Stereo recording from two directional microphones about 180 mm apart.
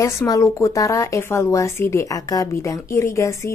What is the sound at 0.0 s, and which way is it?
Speech, 15° left (ahead or behind).